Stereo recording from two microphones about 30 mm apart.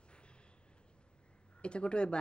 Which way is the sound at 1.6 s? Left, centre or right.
Left.